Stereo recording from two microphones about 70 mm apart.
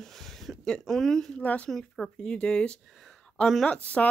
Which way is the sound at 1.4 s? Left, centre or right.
Left.